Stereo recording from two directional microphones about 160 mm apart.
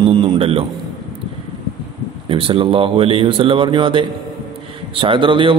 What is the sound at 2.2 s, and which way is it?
A man's voice, 35° right (ahead or behind).